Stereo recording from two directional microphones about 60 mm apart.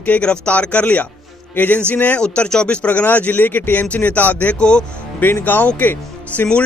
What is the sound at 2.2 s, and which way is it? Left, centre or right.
Speech, centre.